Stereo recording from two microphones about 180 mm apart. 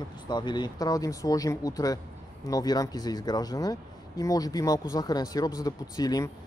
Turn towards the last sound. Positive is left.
turn(degrees=20)  # may be behind; listen again after turning